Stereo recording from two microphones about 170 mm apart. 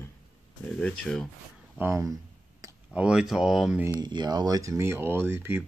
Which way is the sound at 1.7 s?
15° right (ahead or behind).